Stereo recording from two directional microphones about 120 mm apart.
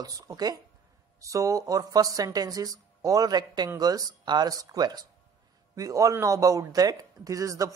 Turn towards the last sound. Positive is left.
turn(degrees=-30)  # may be behind; listen again after turning